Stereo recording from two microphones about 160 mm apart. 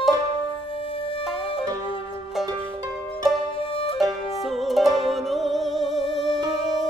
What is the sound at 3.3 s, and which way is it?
Music, centre (ahead or behind).